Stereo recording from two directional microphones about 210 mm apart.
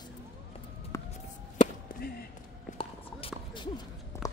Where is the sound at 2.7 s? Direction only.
25° left (ahead or behind).